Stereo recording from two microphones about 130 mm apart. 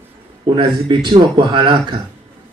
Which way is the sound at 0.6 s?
35° right (ahead or behind).